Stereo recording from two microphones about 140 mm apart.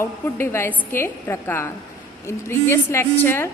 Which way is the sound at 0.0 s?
20° left (ahead or behind).